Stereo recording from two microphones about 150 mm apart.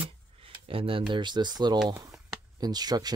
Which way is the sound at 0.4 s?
35° right (ahead or behind).